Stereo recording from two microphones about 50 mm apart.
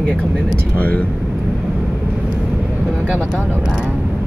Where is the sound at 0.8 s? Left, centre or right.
Left.